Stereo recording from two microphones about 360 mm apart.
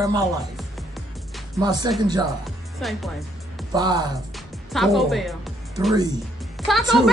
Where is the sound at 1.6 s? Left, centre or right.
Centre.